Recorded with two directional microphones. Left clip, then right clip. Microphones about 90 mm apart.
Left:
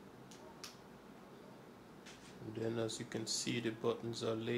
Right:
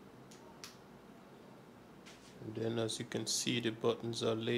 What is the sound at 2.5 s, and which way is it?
Speech, 45° right (ahead or behind).